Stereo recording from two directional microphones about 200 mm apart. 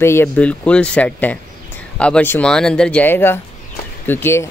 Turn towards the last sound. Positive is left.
turn(degrees=10)  # may be behind; listen again after turning